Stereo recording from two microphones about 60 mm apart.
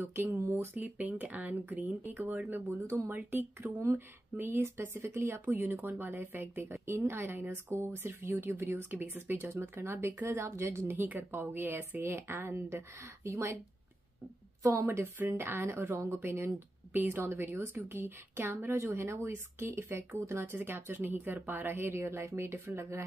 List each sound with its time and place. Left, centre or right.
0.1 s speech: right
3.7 s a woman's voice: right
4.4 s speech: right
11.0 s speech: right
14.6 s a woman's voice: right
14.9 s a woman's voice: right